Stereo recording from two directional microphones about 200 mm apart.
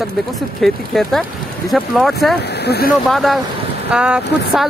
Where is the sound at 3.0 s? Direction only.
Centre (ahead or behind).